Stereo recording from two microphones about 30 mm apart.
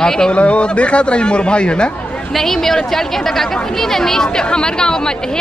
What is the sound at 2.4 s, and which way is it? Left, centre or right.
Speech, centre.